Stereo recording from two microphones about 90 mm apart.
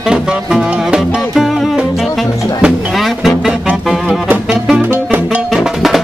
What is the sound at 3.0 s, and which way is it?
Music, centre (ahead or behind).